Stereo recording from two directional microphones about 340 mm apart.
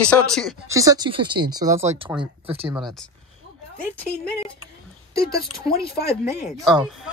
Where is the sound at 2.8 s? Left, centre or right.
Centre.